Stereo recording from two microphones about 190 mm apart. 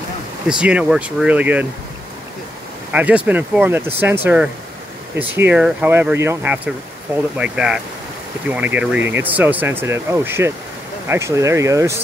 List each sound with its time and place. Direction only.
0.5 s speech: 5° right (ahead or behind)
2.9 s speech: 5° right (ahead or behind)